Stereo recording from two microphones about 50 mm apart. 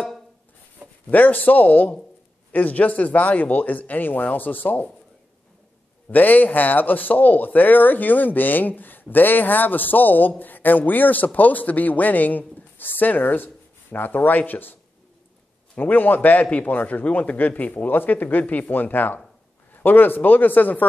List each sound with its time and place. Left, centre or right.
1.0 s speech: left
6.1 s speech: left
15.8 s speech: left